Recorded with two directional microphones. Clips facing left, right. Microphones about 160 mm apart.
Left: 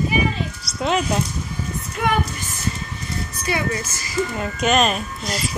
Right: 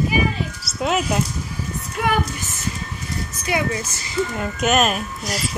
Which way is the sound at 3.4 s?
15° right (ahead or behind).